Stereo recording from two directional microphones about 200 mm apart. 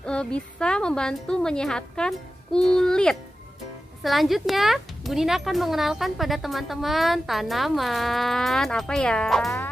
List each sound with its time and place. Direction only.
0.0 s speech: 5° left (ahead or behind)